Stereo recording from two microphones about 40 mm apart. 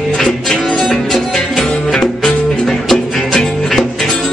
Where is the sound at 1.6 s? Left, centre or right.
Centre.